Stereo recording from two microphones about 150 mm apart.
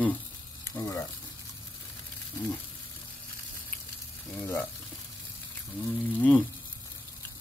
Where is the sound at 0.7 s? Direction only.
20° left (ahead or behind).